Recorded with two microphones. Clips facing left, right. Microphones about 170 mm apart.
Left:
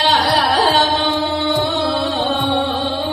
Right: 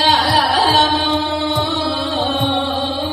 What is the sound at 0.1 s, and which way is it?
Carnatic music, 65° left (ahead or behind).